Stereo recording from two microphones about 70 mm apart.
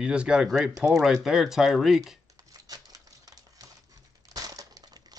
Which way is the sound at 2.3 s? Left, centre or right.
Right.